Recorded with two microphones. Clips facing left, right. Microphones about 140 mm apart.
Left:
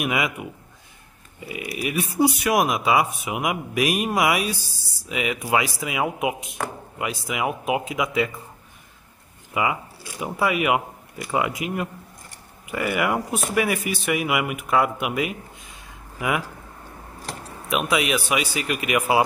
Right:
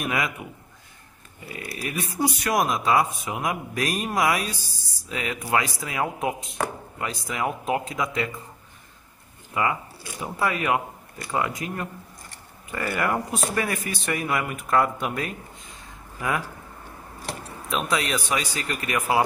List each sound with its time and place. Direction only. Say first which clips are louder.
0.0 s speech: left 3 dB; 15° left (ahead or behind)
1.5 s speech: left 5 dB; 15° left (ahead or behind)
9.5 s speech: left 1 dB; 15° left (ahead or behind)
17.6 s speech: left 3 dB; 15° left (ahead or behind)